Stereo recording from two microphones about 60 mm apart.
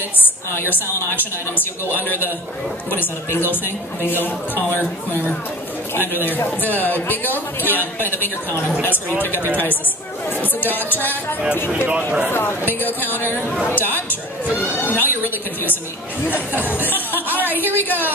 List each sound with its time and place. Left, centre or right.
2.9 s a man's voice: left
10.9 s a man's voice: left
14.8 s a sound: left
16.8 s a man's voice: left
17.5 s a woman's voice: right
17.7 s a man's voice: left